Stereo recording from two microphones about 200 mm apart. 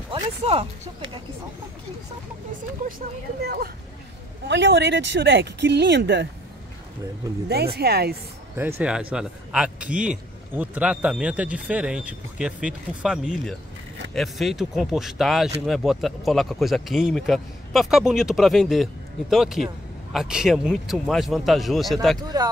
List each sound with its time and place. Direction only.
0.1 s speech: 30° right (ahead or behind)
3.4 s speech: 50° right (ahead or behind)
7.4 s speech: 50° right (ahead or behind)
8.5 s speech: 10° right (ahead or behind)